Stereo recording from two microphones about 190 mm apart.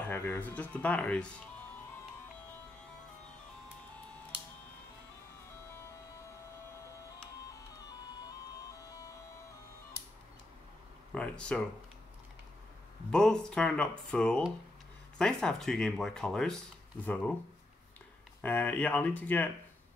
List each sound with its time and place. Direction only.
0.0 s speech: 15° left (ahead or behind)
7.4 s music: 20° left (ahead or behind)
11.1 s speech: 5° left (ahead or behind)
13.1 s speech: 5° left (ahead or behind)
18.4 s speech: 10° left (ahead or behind)